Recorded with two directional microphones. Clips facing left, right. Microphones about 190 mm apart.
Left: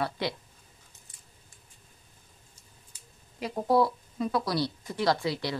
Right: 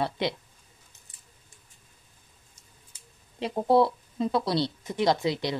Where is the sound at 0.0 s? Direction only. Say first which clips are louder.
Right 3 dB; 20° right (ahead or behind).